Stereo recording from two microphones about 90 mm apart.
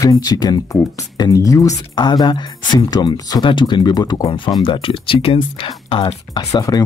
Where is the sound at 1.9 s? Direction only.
60° left (ahead or behind).